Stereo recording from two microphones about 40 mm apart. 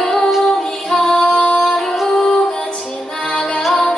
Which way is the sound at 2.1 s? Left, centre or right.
Centre.